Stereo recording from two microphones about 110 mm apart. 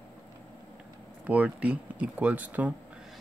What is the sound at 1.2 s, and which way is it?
Speech, 15° right (ahead or behind).